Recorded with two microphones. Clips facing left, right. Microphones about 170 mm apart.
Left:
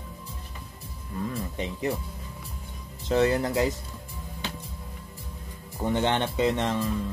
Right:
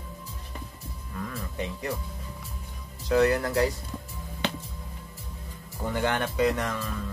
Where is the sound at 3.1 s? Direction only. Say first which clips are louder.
Even; 25° left (ahead or behind).